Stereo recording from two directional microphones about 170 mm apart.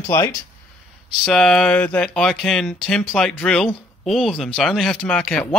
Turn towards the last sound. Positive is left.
turn(degrees=5)  # may be behind; listen again after turning